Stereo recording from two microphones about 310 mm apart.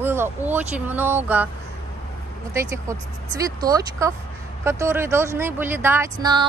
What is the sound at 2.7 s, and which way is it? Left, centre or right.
Speech, centre.